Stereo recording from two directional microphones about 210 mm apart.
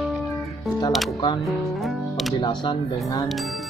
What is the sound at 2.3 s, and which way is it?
Speech, 25° left (ahead or behind).